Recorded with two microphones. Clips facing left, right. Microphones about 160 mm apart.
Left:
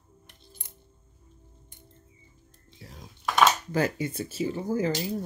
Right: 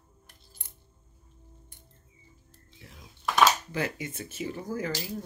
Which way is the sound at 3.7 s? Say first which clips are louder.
Left 6 dB; 40° left (ahead or behind).